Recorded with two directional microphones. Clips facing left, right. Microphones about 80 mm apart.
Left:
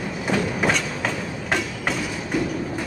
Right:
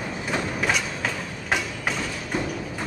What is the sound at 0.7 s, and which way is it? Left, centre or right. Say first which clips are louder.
Train: left 2 dB; centre.